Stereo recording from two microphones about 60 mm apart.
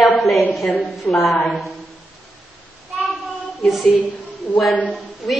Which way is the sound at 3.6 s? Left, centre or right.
Centre.